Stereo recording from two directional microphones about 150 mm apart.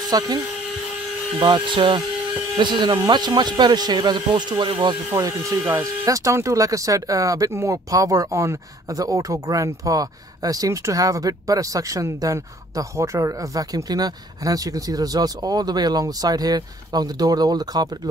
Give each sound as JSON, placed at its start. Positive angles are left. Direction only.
{"t": 0.1, "sound": "speech", "side_deg": -25}
{"t": 1.4, "sound": "speech", "side_deg": -35}